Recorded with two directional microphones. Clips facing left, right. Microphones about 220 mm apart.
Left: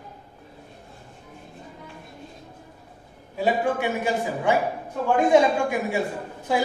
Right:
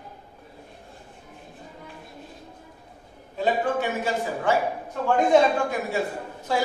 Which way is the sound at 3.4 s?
15° left (ahead or behind).